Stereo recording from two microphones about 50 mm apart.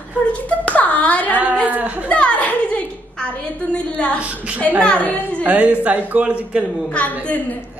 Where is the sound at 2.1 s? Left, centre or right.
Left.